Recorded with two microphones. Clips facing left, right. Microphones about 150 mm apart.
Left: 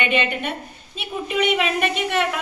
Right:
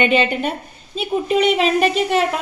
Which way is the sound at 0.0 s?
35° right (ahead or behind).